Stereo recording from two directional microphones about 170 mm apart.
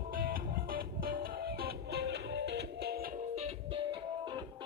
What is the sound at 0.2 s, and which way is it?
Music, 60° right (ahead or behind).